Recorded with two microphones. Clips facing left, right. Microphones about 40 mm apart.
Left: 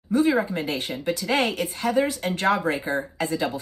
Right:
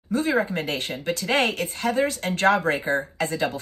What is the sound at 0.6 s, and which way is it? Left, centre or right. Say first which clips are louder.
Speech: even; right.